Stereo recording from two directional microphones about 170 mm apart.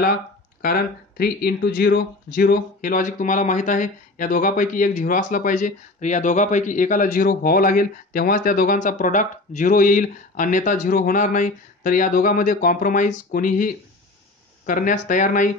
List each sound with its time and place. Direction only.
0.6 s speech: 60° left (ahead or behind)